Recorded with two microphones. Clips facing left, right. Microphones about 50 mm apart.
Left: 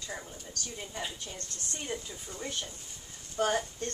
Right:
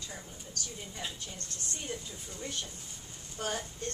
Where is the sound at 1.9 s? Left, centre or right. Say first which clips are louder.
Left 4 dB; left.